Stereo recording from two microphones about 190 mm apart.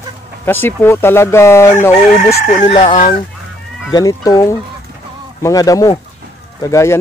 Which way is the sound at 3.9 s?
20° left (ahead or behind).